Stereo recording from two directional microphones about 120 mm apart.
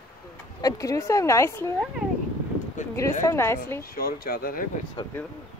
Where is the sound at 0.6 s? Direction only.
30° left (ahead or behind).